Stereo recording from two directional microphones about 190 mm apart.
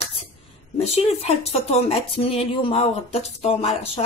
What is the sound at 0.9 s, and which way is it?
Speech, 35° left (ahead or behind).